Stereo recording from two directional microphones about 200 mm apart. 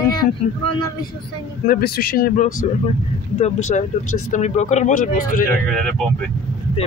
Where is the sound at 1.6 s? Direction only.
50° left (ahead or behind).